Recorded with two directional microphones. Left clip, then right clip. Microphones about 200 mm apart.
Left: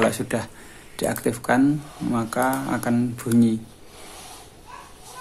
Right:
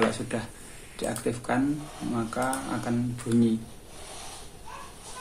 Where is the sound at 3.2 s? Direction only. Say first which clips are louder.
Left 3 dB; 35° left (ahead or behind).